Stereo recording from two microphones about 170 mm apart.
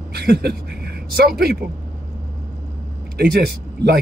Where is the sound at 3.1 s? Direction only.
70° right (ahead or behind).